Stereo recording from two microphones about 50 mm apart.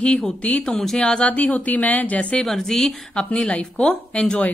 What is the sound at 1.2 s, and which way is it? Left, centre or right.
Speech, left.